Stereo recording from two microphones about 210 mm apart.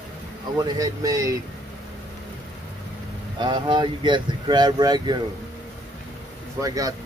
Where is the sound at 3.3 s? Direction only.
20° right (ahead or behind).